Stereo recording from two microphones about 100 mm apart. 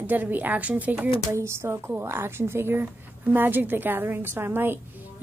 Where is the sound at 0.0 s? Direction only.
15° right (ahead or behind).